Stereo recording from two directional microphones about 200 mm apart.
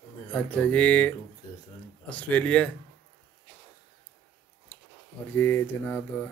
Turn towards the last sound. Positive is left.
turn(degrees=10)  # may be behind; listen again after turning